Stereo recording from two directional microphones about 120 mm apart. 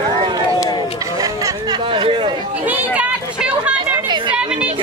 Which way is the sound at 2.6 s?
15° right (ahead or behind).